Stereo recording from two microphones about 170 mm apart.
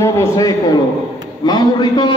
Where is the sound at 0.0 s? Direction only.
20° left (ahead or behind).